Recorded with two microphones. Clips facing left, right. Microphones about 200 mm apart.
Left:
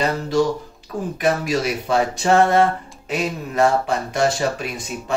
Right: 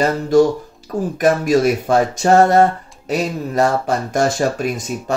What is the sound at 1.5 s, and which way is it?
Speech, 50° right (ahead or behind).